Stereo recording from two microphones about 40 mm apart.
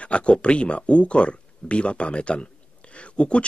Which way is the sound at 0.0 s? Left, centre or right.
Left.